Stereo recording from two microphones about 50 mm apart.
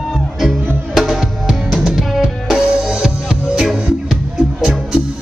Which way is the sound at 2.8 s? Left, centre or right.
Centre.